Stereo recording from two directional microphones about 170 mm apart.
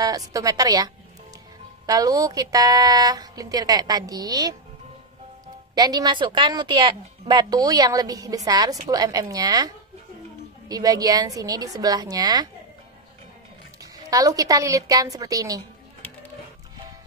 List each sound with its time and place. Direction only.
0.0 s a woman's voice: 20° right (ahead or behind)
5.8 s a woman's voice: 25° right (ahead or behind)
13.9 s a woman's voice: 20° right (ahead or behind)